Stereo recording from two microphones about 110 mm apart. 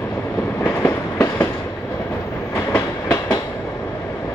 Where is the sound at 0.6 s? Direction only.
20° left (ahead or behind).